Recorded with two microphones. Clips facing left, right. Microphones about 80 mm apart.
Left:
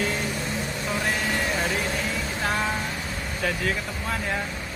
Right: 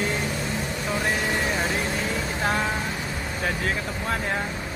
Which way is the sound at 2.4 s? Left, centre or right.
Right.